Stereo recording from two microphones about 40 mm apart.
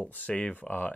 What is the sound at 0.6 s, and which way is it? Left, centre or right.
Speech, left.